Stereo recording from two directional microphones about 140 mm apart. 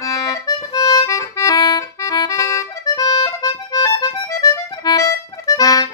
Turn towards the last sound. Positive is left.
turn(degrees=25)  # may be behind; listen again after turning